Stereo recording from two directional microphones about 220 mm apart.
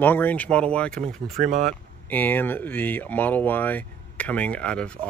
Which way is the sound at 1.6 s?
10° left (ahead or behind).